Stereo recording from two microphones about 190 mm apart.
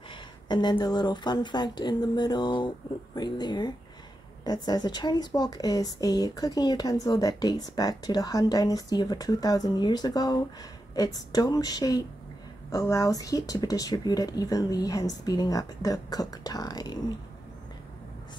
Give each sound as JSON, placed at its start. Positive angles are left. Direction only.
{"t": 0.5, "sound": "a woman's voice", "side_deg": 20}